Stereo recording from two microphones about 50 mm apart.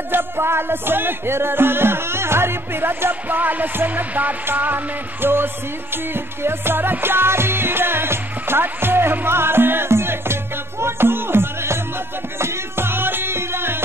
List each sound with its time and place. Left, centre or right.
0.1 s music: right